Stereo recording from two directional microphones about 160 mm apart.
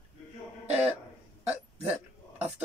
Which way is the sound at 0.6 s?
40° right (ahead or behind).